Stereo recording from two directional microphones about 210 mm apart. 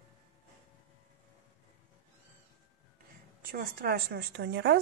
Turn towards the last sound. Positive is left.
turn(degrees=-55)  # may be behind; listen again after turning